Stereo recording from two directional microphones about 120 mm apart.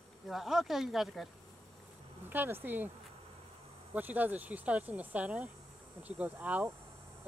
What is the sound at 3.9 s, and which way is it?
Speech, 15° right (ahead or behind).